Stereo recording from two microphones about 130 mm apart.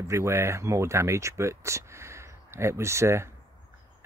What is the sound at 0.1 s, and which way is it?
Speech, 20° right (ahead or behind).